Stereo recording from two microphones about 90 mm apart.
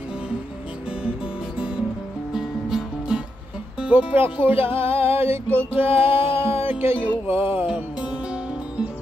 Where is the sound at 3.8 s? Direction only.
15° right (ahead or behind).